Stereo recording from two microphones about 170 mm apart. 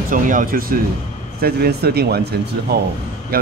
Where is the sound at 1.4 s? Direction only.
70° right (ahead or behind).